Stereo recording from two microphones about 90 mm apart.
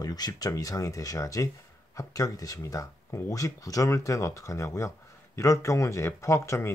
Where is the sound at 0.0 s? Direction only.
45° left (ahead or behind).